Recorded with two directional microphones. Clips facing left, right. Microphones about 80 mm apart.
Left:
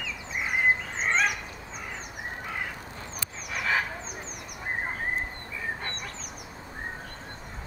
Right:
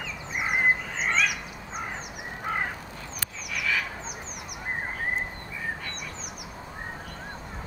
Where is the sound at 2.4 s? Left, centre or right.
Right.